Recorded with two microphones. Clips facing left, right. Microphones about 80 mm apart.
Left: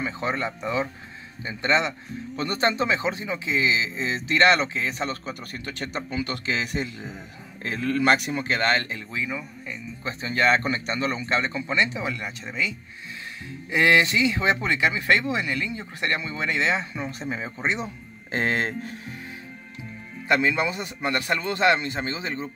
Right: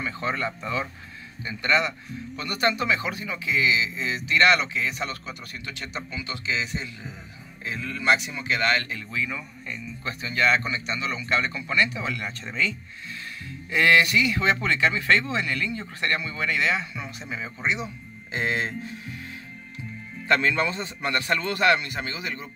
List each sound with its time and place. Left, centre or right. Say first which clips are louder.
0.0 s speech: left 1 dB; left
10.2 s speech: left 2 dB; left
20.2 s speech: even; centre